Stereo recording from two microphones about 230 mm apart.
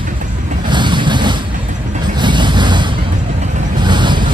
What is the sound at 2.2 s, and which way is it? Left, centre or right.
Vehicle, centre.